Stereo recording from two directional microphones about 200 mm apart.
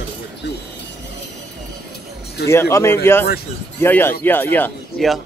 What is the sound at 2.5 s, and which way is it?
Speech, 15° left (ahead or behind).